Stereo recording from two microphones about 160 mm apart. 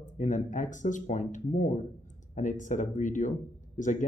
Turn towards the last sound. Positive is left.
turn(degrees=50)  # may be behind; listen again after turning